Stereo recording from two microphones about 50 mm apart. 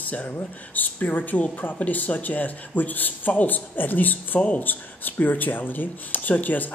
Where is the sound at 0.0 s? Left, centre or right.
Left.